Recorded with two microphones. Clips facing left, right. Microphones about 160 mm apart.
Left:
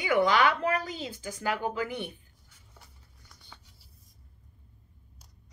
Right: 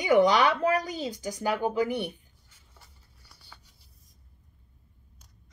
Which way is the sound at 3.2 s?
5° right (ahead or behind).